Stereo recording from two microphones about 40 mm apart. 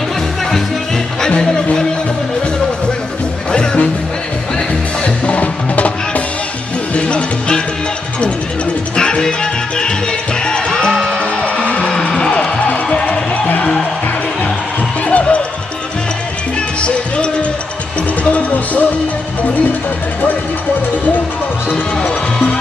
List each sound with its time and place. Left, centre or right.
5.0 s music: left
7.0 s music: left
8.9 s music: centre
15.0 s music: left
16.8 s music: left
18.3 s music: left
22.0 s music: left